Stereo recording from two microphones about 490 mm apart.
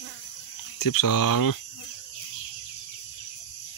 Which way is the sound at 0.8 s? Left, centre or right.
Left.